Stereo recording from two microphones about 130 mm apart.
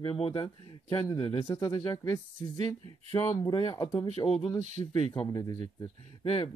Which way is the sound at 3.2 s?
30° left (ahead or behind).